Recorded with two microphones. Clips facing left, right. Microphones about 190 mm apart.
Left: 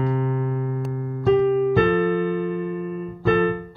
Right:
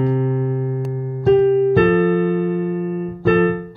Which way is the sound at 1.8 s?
55° right (ahead or behind).